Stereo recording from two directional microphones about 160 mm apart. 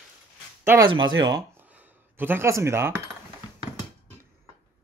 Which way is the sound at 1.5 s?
10° right (ahead or behind).